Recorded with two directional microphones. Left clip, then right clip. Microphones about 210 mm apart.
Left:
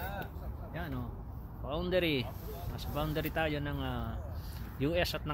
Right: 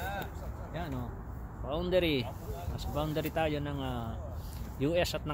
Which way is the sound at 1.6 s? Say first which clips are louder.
Right 2 dB; centre (ahead or behind).